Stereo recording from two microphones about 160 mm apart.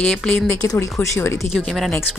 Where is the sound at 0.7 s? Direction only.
20° left (ahead or behind).